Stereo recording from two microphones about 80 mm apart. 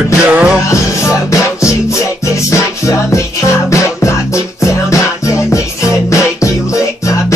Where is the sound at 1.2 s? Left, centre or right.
Left.